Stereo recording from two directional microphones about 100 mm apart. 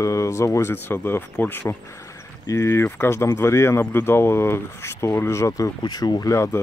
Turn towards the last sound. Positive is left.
turn(degrees=30)  # may be behind; listen again after turning